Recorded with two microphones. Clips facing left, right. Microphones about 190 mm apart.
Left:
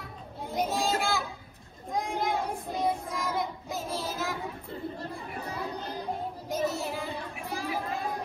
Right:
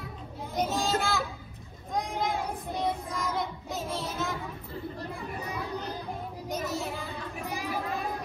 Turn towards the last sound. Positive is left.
turn(degrees=-15)  # may be behind; listen again after turning